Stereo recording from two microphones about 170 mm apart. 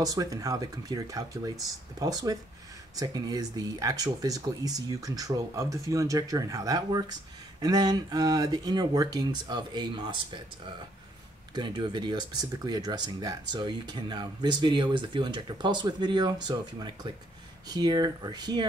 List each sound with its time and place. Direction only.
0.0 s speech: 20° right (ahead or behind)
11.5 s speech: 25° right (ahead or behind)